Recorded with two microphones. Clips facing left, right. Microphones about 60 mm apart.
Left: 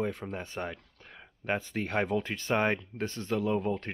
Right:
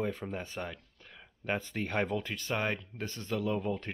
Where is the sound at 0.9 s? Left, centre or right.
Centre.